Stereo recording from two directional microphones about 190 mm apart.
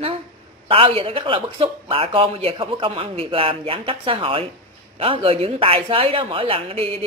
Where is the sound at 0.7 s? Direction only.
30° right (ahead or behind).